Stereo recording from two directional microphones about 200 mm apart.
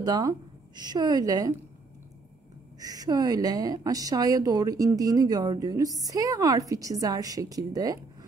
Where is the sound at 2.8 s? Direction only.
20° right (ahead or behind).